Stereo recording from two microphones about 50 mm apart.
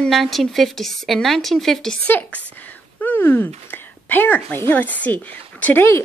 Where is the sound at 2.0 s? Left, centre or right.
Left.